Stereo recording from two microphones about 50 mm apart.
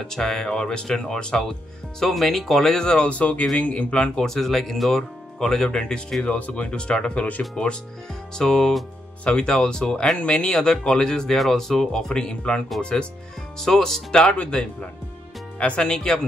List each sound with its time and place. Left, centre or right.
0.0 s speech: centre
2.0 s speech: centre
6.2 s speech: left
8.4 s speech: centre